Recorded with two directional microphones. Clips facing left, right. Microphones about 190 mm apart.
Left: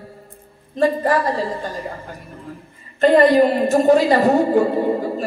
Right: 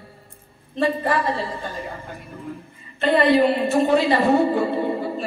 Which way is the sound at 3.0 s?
40° left (ahead or behind).